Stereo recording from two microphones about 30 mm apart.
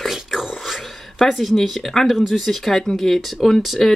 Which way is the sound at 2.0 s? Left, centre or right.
Centre.